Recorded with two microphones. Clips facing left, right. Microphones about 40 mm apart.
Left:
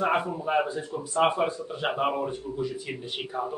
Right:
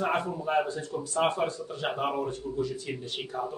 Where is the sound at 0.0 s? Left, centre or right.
Centre.